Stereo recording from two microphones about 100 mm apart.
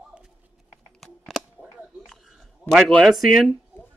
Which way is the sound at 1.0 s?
5° left (ahead or behind).